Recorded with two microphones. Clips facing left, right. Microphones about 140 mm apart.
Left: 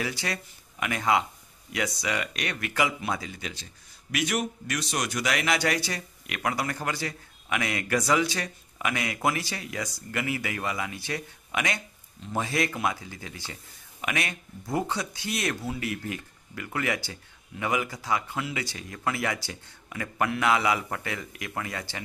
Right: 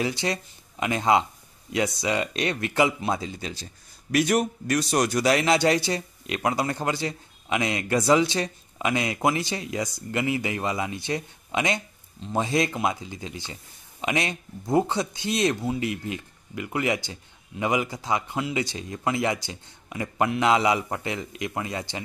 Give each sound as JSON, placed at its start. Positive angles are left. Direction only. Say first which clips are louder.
{"t": 0.0, "sound": "speech", "louder": "right 5 dB", "side_deg": -25}